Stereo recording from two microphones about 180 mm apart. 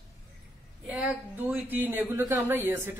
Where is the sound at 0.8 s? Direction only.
10° right (ahead or behind).